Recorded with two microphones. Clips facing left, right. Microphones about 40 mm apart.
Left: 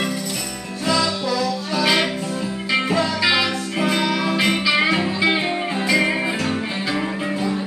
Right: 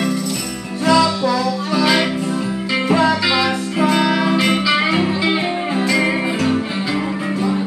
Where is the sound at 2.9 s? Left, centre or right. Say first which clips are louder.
Right 10 dB; right.